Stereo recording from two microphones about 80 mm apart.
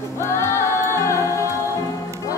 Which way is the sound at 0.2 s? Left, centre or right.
Left.